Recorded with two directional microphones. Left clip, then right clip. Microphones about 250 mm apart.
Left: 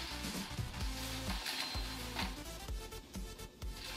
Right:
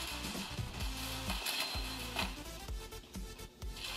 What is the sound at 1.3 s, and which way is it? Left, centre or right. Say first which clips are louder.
Music: right 3 dB; centre.